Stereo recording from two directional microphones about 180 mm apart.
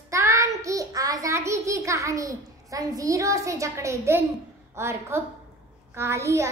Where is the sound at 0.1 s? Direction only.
15° right (ahead or behind).